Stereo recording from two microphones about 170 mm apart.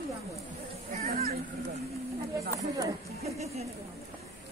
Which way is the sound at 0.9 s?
40° right (ahead or behind).